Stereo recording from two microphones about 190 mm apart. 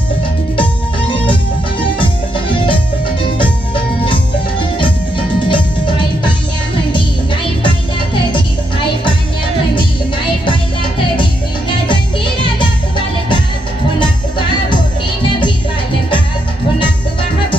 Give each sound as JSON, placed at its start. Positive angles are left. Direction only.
{"t": 1.1, "sound": "music", "side_deg": 25}
{"t": 2.5, "sound": "music", "side_deg": 25}
{"t": 4.0, "sound": "music", "side_deg": 25}